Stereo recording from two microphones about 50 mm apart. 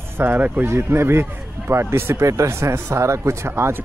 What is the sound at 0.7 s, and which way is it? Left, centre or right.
Speech, right.